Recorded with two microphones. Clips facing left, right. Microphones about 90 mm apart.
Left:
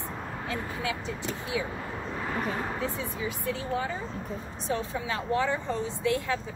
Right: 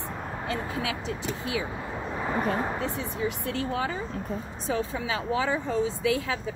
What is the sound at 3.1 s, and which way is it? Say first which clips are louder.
Speech: right 3 dB; 70° right (ahead or behind).